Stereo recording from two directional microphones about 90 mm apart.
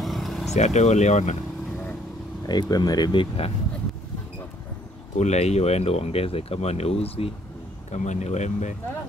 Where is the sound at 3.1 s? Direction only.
90° left.